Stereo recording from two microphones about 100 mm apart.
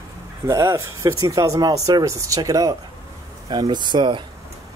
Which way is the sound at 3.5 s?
45° right (ahead or behind).